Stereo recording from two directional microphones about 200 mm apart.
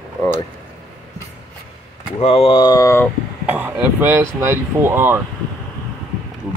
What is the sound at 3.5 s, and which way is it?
Speech, 10° right (ahead or behind).